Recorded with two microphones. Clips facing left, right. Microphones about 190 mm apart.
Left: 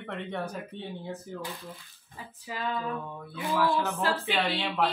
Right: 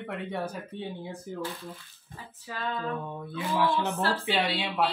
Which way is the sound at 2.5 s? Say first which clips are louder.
Left 1 dB; 10° left (ahead or behind).